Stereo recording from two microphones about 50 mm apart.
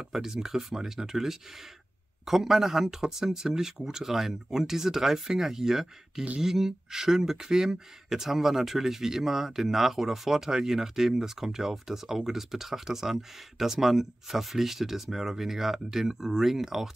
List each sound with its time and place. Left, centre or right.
0.0 s speech: centre